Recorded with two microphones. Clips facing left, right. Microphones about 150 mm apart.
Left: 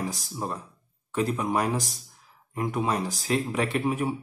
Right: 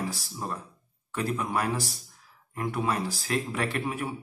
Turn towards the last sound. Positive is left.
turn(degrees=20)  # may be behind; listen again after turning